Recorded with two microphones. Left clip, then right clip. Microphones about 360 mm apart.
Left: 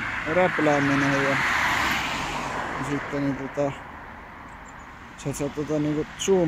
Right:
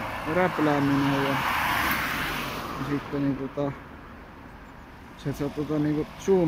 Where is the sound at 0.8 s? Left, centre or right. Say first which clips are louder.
Left 3 dB; centre.